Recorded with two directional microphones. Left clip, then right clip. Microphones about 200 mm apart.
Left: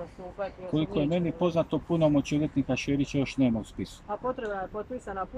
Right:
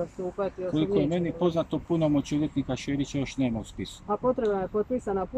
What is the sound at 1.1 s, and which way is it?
Speech, 5° left (ahead or behind).